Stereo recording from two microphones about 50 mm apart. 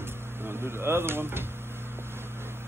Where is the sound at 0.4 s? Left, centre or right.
Right.